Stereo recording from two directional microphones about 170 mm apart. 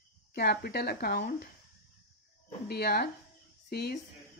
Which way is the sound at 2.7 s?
65° left (ahead or behind).